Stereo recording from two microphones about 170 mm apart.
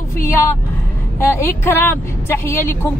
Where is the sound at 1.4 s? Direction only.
10° left (ahead or behind).